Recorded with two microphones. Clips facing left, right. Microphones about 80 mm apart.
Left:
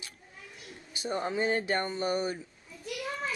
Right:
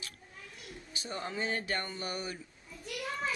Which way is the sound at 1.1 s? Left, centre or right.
Left.